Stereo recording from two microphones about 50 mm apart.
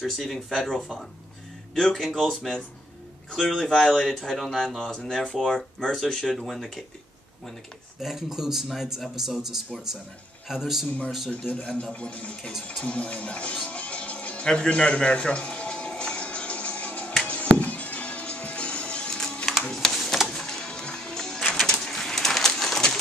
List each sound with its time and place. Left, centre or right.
0.0 s speech: centre
6.2 s speech: centre
8.0 s a man's voice: centre
11.2 s speech: left
12.8 s music: left
21.6 s bird: centre